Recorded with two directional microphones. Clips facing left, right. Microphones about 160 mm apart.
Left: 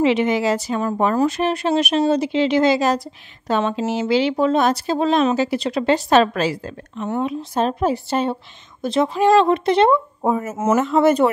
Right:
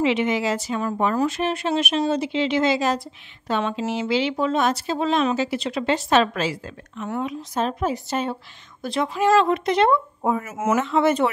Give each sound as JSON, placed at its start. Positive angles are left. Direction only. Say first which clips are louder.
{"t": 0.0, "sound": "a woman's voice", "louder": "left 4 dB", "side_deg": 40}
{"t": 10.8, "sound": "a woman's voice", "louder": "left 5 dB", "side_deg": 40}